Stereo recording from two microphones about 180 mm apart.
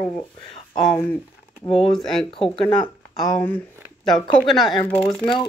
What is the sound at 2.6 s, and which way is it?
Speech, 30° left (ahead or behind).